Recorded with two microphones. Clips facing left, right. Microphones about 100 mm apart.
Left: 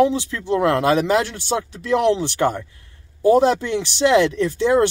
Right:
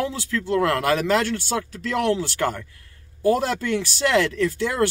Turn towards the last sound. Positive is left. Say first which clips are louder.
# left 5 dB
turn(degrees=20)  # may be behind; listen again after turning